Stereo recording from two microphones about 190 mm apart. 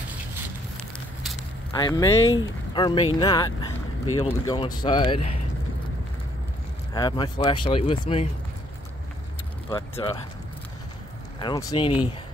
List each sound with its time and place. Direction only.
1.7 s speech: 20° left (ahead or behind)
6.9 s speech: 20° left (ahead or behind)
9.7 s speech: 25° left (ahead or behind)
11.4 s speech: 25° left (ahead or behind)